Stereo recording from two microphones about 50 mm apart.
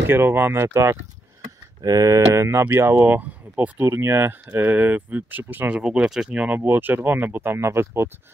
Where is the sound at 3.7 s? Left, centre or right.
Right.